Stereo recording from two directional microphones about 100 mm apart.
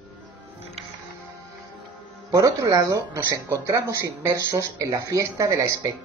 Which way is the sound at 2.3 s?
35° right (ahead or behind).